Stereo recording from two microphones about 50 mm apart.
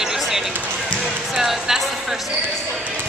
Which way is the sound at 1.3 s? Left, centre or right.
Centre.